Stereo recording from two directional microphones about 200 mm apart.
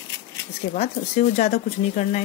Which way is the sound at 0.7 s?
35° left (ahead or behind).